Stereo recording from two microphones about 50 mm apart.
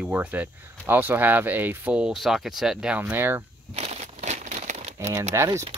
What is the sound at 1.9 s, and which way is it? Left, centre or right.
Speech, right.